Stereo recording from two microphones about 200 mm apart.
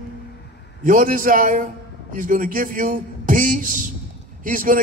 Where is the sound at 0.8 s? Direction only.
45° right (ahead or behind).